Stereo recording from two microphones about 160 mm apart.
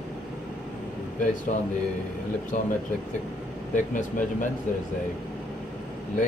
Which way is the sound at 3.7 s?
55° left (ahead or behind).